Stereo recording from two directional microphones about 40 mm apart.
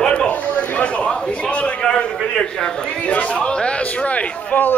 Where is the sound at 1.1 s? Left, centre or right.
Left.